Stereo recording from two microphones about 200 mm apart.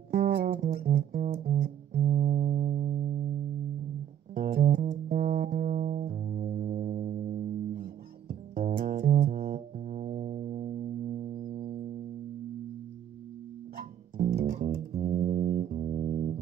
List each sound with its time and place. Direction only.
0.1 s music: 50° right (ahead or behind)
4.4 s music: 50° right (ahead or behind)
13.7 s music: 45° right (ahead or behind)
14.5 s music: 35° right (ahead or behind)